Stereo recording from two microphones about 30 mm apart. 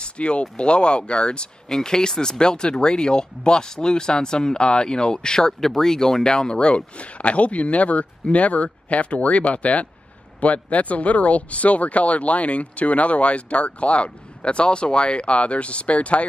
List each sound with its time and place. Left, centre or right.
0.0 s speech: left
1.7 s speech: left
6.2 s speech: left